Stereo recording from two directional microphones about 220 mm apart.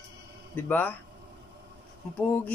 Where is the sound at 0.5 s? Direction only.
10° left (ahead or behind).